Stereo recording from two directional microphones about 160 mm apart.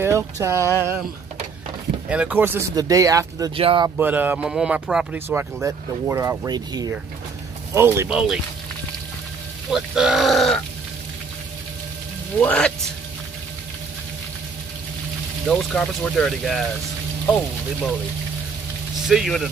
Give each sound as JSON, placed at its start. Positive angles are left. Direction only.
{"t": 0.0, "sound": "speech", "side_deg": -15}
{"t": 2.0, "sound": "speech", "side_deg": -10}
{"t": 3.5, "sound": "speech", "side_deg": -30}
{"t": 4.0, "sound": "speech", "side_deg": -10}
{"t": 5.3, "sound": "speech", "side_deg": -15}
{"t": 8.1, "sound": "speech", "side_deg": -5}
{"t": 9.7, "sound": "speech", "side_deg": -5}
{"t": 12.4, "sound": "speech", "side_deg": 5}
{"t": 15.4, "sound": "speech", "side_deg": 5}
{"t": 19.0, "sound": "speech", "side_deg": 0}